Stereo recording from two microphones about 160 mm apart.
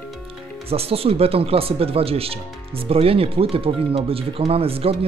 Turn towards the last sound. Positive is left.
turn(degrees=-35)  # may be behind; listen again after turning